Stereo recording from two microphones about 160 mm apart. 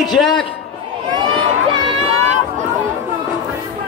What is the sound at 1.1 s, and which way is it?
Crowd, 30° right (ahead or behind).